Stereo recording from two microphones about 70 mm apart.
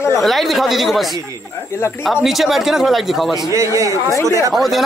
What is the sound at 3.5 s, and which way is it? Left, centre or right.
Speech, right.